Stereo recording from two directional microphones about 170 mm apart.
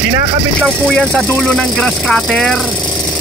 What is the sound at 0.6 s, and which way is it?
Speech, centre (ahead or behind).